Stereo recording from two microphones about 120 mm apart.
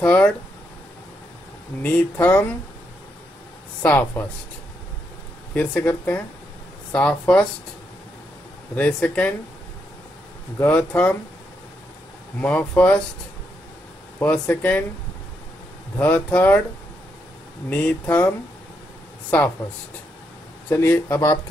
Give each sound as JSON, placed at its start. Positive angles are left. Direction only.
{"t": 0.0, "sound": "speech", "side_deg": 10}
{"t": 1.8, "sound": "speech", "side_deg": 15}
{"t": 3.8, "sound": "speech", "side_deg": 15}
{"t": 5.5, "sound": "speech", "side_deg": 15}
{"t": 8.7, "sound": "speech", "side_deg": 10}
{"t": 10.6, "sound": "speech", "side_deg": 10}
{"t": 12.4, "sound": "speech", "side_deg": 15}
{"t": 14.2, "sound": "speech", "side_deg": 10}
{"t": 16.0, "sound": "speech", "side_deg": 10}
{"t": 17.6, "sound": "speech", "side_deg": 15}
{"t": 20.7, "sound": "speech", "side_deg": 20}